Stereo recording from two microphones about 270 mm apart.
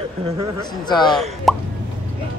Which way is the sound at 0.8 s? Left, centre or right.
Centre.